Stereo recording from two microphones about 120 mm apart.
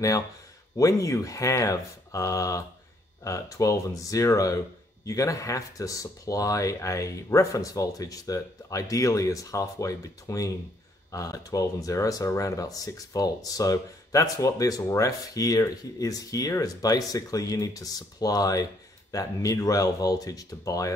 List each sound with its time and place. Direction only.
0.7 s speech: 30° left (ahead or behind)